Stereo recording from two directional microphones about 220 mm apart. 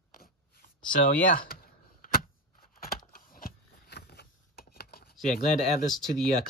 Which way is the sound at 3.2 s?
40° left (ahead or behind).